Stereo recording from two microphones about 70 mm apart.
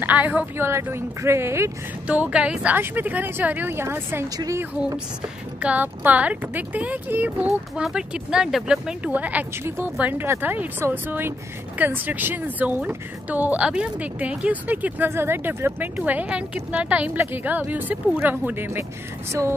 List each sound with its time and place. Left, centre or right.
0.0 s speech: right
0.6 s speech: right
2.0 s speech: centre; by 4.3 s right
5.6 s speech: right
9.1 s speech: right
10.1 s speech: right